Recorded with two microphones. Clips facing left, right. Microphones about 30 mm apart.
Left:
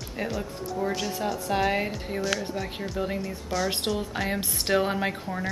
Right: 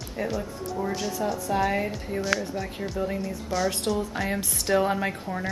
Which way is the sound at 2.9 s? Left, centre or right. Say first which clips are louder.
Right 1 dB; left.